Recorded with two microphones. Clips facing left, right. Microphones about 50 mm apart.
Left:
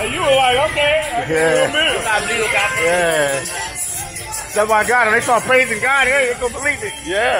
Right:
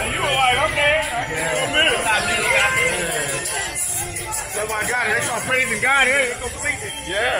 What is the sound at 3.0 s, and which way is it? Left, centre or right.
Speech, left.